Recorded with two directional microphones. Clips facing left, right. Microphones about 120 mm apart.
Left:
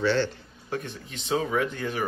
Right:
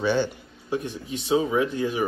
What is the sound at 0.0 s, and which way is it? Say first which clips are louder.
Speech: right 1 dB; 15° right (ahead or behind).